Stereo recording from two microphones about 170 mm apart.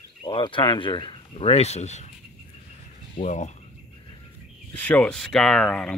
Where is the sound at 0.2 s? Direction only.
30° left (ahead or behind).